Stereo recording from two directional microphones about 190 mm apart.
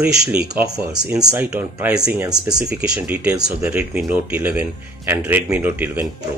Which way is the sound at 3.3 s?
20° right (ahead or behind).